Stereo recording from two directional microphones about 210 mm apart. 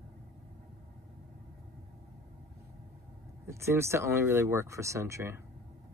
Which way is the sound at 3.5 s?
15° right (ahead or behind).